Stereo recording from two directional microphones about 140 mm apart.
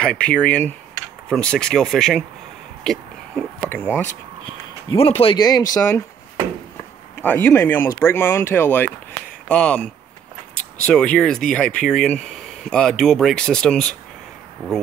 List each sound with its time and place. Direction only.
0.0 s speech: 10° left (ahead or behind)
4.8 s speech: 45° left (ahead or behind)
5.4 s speech: 30° left (ahead or behind)
7.2 s speech: 15° left (ahead or behind)